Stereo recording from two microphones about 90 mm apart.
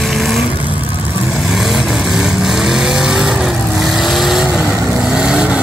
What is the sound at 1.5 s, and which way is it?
Vehicle, 5° right (ahead or behind).